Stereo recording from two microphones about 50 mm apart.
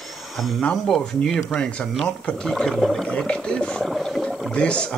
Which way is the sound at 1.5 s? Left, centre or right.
Left.